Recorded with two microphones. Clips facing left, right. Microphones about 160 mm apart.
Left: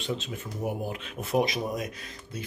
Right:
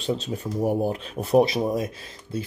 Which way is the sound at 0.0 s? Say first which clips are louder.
Right 6 dB; 35° right (ahead or behind).